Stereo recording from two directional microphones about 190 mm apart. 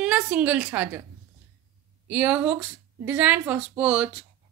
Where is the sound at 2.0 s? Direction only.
10° right (ahead or behind).